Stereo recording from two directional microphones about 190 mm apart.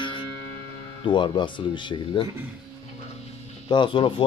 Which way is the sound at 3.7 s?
25° left (ahead or behind).